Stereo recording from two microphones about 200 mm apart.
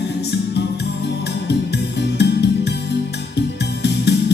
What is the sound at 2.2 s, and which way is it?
Music, 55° left (ahead or behind).